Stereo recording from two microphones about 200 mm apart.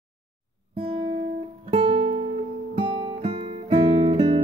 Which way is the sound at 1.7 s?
30° right (ahead or behind).